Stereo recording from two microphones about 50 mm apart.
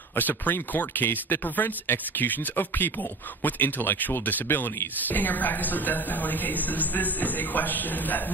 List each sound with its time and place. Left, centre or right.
0.1 s speech: left